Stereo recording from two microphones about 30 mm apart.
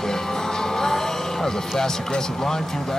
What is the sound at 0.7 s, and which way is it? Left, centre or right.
Music, centre.